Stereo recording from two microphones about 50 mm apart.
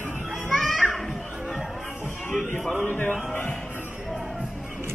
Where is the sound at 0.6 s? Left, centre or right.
Centre.